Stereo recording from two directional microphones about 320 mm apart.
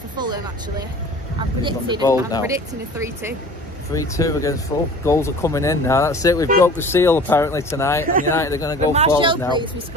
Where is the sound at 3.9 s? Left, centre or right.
Centre.